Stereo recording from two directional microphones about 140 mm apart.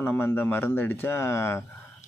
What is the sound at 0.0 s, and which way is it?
Speech, 15° left (ahead or behind).